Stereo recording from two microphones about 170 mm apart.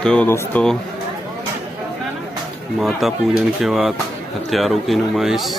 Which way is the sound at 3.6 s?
Centre (ahead or behind).